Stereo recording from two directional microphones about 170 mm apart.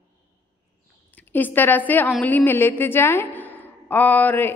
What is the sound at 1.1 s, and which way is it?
A woman's voice, 10° left (ahead or behind).